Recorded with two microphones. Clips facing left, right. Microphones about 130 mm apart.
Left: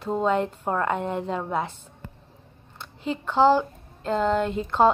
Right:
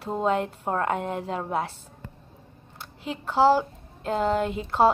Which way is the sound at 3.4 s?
5° right (ahead or behind).